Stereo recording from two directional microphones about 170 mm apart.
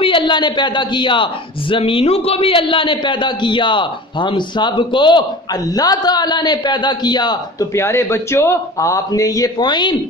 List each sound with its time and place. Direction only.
0.0 s a man's voice: 30° left (ahead or behind)